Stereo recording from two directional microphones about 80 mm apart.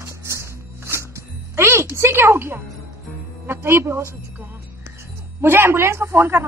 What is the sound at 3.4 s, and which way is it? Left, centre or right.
Speech, right.